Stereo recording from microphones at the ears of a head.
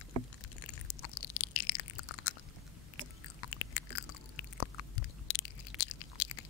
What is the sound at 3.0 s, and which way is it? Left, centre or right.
Chewing, left.